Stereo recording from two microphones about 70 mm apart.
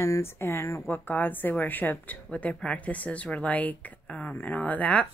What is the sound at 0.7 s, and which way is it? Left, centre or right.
A woman's voice, left.